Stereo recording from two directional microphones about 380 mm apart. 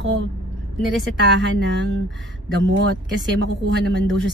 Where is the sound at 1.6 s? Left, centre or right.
Right.